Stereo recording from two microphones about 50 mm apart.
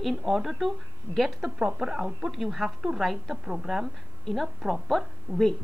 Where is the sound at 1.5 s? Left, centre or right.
Right.